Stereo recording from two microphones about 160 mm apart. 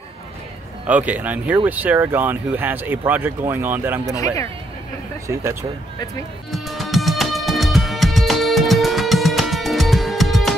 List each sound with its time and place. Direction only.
0.8 s speech: 10° right (ahead or behind)
5.3 s speech: 15° right (ahead or behind)
6.5 s music: centre (ahead or behind)